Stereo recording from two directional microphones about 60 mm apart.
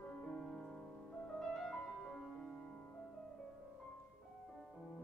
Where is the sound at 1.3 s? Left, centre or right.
Centre.